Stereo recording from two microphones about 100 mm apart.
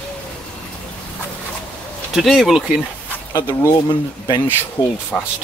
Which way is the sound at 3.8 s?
45° left (ahead or behind).